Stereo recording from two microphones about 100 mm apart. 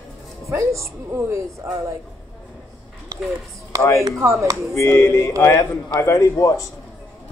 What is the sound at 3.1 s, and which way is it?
Chop, 35° right (ahead or behind).